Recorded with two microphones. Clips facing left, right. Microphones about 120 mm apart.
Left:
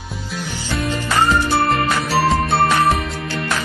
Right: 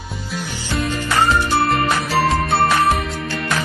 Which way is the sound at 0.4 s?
15° right (ahead or behind).